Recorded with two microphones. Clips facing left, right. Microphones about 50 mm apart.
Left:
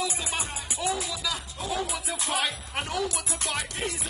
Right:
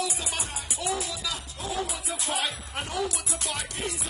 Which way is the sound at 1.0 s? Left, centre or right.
Right.